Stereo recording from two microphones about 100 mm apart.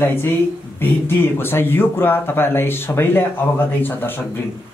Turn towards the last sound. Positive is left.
turn(degrees=20)  # may be behind; listen again after turning